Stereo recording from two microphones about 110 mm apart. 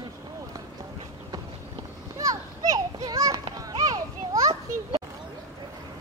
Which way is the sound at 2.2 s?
30° right (ahead or behind).